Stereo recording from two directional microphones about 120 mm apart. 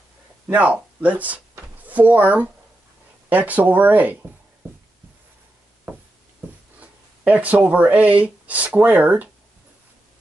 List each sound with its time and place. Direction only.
0.5 s speech: 10° right (ahead or behind)
6.8 s speech: 10° right (ahead or behind)